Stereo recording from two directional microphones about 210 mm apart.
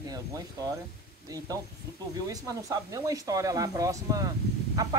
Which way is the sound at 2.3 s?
15° right (ahead or behind).